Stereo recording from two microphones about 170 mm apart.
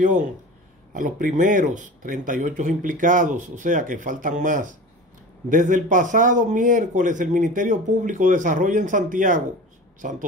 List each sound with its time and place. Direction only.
0.0 s speech: 50° right (ahead or behind)